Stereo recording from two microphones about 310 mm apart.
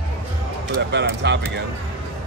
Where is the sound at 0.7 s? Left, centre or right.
Right.